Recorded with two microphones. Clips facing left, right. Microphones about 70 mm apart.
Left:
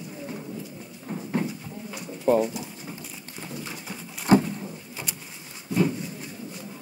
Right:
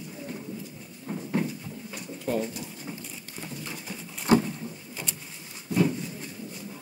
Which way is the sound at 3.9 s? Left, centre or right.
Left.